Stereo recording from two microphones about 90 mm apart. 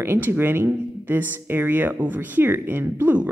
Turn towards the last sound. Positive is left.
turn(degrees=-20)  # may be behind; listen again after turning